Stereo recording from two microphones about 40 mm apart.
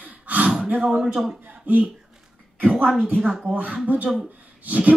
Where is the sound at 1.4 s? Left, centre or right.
Right.